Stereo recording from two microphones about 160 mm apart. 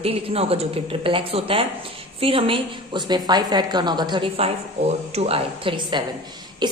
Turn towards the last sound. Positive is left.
turn(degrees=-30)  # may be behind; listen again after turning